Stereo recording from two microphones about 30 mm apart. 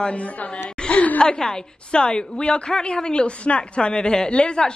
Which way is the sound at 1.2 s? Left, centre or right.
Left.